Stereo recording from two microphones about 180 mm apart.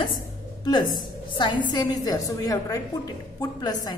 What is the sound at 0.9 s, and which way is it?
A woman's voice, 25° left (ahead or behind).